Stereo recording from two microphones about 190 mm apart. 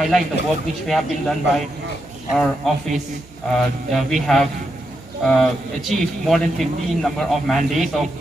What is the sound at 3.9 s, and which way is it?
A man's voice, centre (ahead or behind).